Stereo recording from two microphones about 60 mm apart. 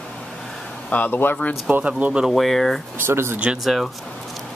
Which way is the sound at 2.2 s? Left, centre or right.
Centre.